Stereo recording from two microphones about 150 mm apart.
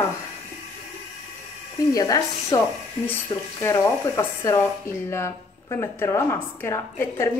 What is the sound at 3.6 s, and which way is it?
Speech, 15° left (ahead or behind).